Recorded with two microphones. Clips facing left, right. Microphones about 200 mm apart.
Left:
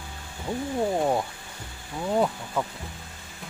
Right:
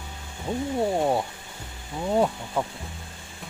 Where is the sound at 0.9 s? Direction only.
5° right (ahead or behind).